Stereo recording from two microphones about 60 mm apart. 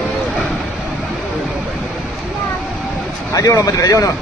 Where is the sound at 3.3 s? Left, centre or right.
Left.